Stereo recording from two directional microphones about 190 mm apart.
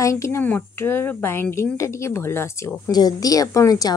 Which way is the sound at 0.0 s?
15° left (ahead or behind).